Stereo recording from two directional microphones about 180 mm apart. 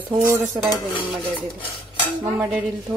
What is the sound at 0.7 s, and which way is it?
Stir, 25° left (ahead or behind).